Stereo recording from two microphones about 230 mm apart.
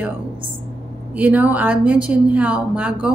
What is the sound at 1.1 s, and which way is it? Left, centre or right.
Speech, centre.